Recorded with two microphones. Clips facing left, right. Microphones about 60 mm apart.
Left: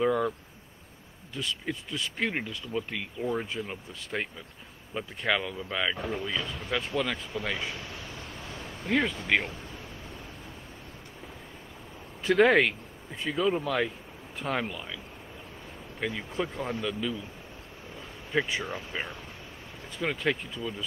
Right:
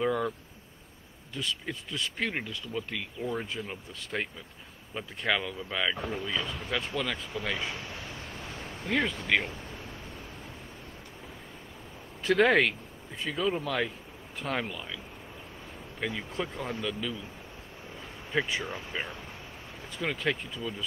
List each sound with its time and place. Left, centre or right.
0.0 s speech: centre
1.3 s speech: centre
7.7 s speech: right
8.5 s a sound: right
8.8 s speech: centre
12.2 s speech: centre
16.2 s speech: centre
18.6 s speech: left
20.0 s speech: centre